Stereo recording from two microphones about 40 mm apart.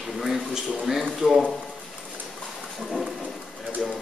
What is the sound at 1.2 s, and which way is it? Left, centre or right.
Speech, right.